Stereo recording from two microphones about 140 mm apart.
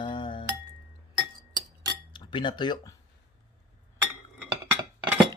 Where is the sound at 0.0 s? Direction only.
35° left (ahead or behind).